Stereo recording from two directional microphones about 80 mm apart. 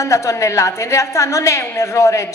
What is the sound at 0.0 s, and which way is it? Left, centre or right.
Speech, left.